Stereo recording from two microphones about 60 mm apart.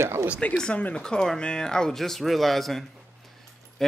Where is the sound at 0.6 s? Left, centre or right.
Centre.